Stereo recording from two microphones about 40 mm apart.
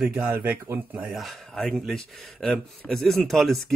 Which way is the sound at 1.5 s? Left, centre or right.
Centre.